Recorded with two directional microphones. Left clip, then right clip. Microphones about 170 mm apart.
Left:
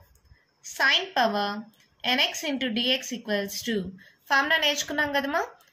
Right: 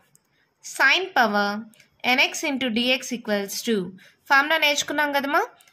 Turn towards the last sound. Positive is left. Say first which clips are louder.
# right 4 dB
turn(degrees=-50)  # may be behind; listen again after turning